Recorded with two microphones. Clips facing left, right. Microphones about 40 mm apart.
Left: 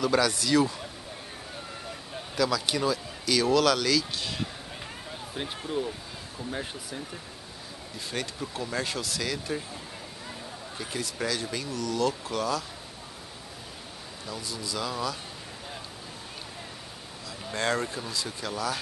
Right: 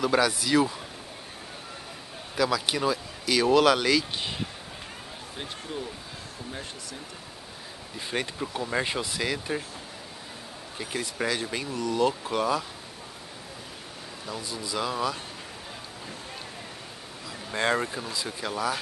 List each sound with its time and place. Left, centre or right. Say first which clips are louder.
0.0 s speech: right 1 dB; centre
2.3 s speech: right 1 dB; centre
5.3 s speech: left 4 dB; centre
8.1 s speech: right 4 dB; centre
10.8 s speech: right 2 dB; centre
14.2 s speech: right 1 dB; centre
17.5 s speech: right 2 dB; centre